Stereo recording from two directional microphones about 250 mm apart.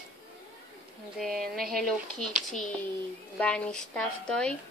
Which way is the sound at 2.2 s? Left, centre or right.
Centre.